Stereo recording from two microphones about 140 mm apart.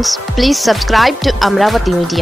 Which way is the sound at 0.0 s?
Centre (ahead or behind).